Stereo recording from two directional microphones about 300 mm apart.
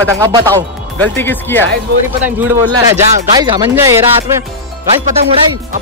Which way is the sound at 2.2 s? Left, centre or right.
Centre.